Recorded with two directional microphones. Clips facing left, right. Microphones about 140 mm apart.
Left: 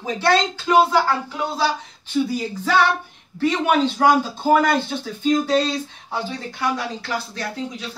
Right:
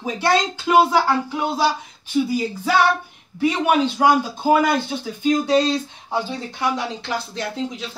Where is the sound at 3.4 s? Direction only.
10° right (ahead or behind).